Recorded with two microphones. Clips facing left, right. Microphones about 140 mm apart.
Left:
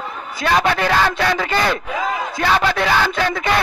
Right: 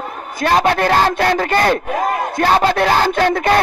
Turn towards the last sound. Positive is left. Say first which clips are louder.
# right 5 dB
turn(degrees=-50)  # may be behind; listen again after turning